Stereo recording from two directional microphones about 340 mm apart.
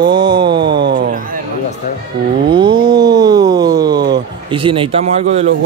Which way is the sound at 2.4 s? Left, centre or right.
Centre.